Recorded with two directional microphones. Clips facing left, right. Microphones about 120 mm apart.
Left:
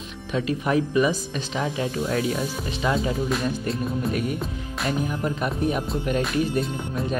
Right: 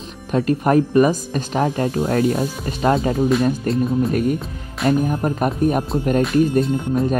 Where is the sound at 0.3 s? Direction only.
45° right (ahead or behind).